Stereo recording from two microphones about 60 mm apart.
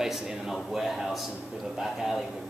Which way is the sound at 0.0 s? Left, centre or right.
Centre.